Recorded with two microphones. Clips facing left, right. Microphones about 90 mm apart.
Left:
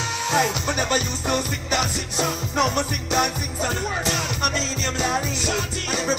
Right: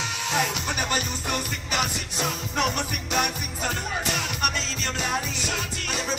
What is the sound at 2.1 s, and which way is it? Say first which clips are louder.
Music: left 5 dB; 20° left (ahead or behind).